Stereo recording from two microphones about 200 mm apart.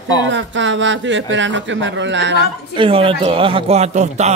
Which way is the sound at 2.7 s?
25° right (ahead or behind).